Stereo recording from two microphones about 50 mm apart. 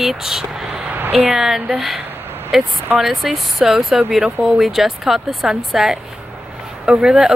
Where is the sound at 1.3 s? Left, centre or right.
Centre.